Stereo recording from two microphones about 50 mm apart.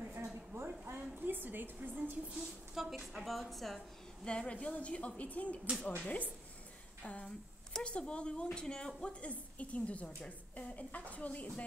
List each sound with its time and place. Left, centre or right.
0.1 s a sound: right
0.8 s a woman's voice: right
2.7 s a woman's voice: centre
4.2 s a woman's voice: centre